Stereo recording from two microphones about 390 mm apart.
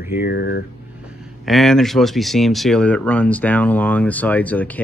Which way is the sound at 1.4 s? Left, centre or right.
Centre.